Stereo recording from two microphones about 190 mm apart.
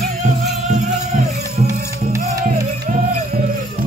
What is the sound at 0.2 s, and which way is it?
Music, 40° right (ahead or behind).